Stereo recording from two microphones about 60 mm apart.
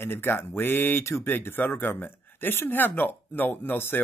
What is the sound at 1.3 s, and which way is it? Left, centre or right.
Speech, left.